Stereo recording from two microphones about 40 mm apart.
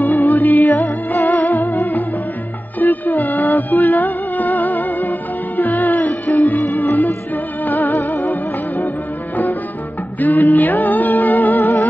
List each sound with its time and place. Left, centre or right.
0.0 s music: left
10.2 s music: left